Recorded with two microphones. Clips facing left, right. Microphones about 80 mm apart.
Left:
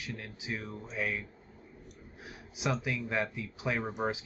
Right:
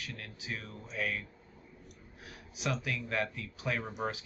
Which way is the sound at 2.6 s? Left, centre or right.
Centre.